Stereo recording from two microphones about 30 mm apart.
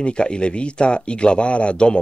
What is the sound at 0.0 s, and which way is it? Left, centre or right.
Speech, left.